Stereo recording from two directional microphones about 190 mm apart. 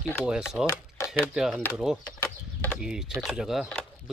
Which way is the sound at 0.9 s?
15° left (ahead or behind).